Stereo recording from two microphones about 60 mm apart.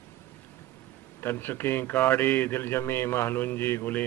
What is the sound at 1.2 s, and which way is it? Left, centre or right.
A man's voice, left.